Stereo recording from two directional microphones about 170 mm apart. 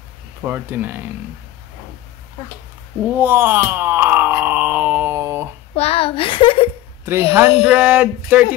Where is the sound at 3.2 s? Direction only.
15° right (ahead or behind).